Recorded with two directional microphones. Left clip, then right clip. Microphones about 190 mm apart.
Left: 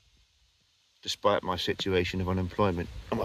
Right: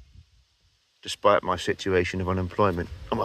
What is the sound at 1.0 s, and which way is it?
Speech, 5° left (ahead or behind).